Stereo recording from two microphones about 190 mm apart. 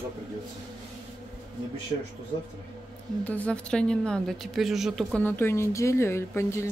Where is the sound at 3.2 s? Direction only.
5° left (ahead or behind).